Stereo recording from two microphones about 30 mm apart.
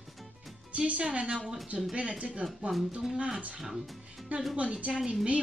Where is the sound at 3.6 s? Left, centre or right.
Centre.